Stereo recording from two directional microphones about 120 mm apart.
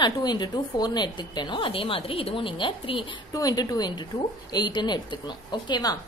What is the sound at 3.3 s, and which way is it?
A woman's voice, 30° left (ahead or behind).